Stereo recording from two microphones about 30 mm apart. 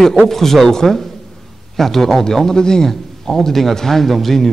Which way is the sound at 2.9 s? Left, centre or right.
Centre.